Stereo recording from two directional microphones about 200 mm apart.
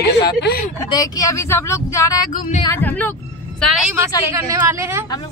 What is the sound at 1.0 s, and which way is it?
Speech, 15° left (ahead or behind).